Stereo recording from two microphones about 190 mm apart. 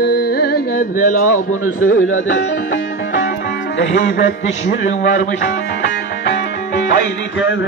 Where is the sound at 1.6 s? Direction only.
90° left.